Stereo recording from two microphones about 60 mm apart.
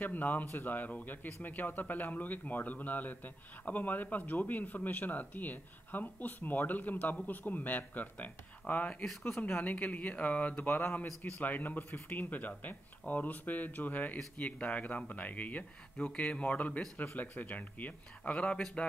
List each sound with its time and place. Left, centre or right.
0.0 s a man's voice: left